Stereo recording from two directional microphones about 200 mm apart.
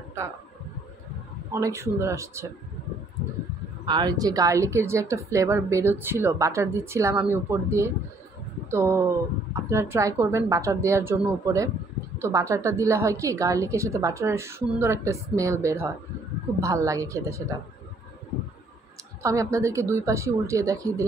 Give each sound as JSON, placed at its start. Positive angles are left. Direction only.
{"t": 1.5, "sound": "a woman's voice", "side_deg": -15}
{"t": 3.8, "sound": "a woman's voice", "side_deg": -20}
{"t": 19.2, "sound": "a woman's voice", "side_deg": -15}